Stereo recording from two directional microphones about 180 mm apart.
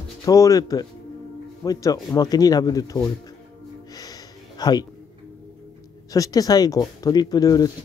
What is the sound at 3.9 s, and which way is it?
Music, 20° left (ahead or behind).